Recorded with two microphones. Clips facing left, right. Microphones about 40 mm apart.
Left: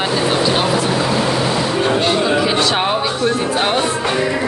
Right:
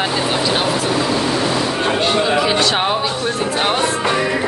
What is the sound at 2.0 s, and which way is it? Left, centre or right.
Speech, centre.